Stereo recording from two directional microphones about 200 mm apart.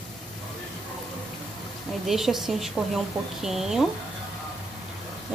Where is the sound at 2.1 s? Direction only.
Centre (ahead or behind).